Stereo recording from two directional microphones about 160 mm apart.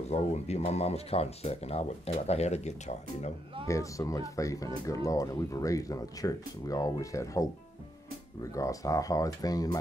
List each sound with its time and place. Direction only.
0.1 s speech: 45° left (ahead or behind)
3.6 s speech: 20° left (ahead or behind)
8.5 s speech: 20° left (ahead or behind)